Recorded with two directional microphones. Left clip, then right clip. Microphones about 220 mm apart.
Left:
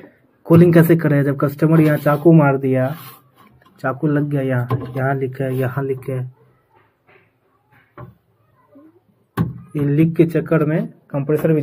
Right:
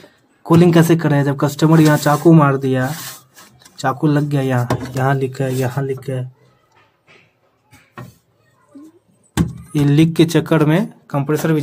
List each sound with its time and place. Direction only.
0.4 s speech: 10° right (ahead or behind)
9.7 s speech: 30° right (ahead or behind)